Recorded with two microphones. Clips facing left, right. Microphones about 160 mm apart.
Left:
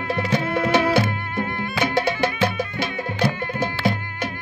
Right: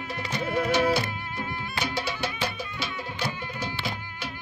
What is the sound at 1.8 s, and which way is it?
Music, 50° left (ahead or behind).